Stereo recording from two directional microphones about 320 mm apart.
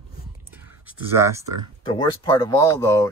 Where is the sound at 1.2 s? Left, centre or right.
Centre.